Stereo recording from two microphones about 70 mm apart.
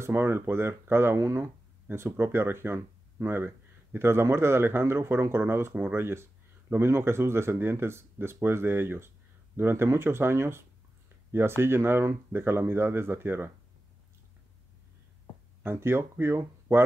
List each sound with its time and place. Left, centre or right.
0.0 s speech: right
15.6 s speech: right